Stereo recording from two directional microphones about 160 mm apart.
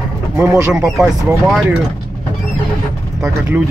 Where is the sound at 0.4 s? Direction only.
15° right (ahead or behind).